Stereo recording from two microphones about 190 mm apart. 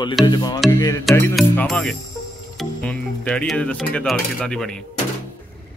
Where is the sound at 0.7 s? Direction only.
20° left (ahead or behind).